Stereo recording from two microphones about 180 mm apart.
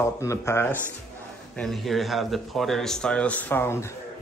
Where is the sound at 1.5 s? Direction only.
Centre (ahead or behind).